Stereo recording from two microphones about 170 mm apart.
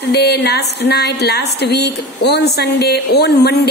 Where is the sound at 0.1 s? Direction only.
70° left (ahead or behind).